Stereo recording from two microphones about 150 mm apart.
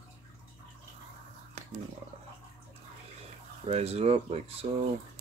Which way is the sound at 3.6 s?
40° right (ahead or behind).